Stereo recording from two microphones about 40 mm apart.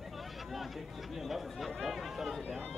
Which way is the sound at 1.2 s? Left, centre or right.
Centre.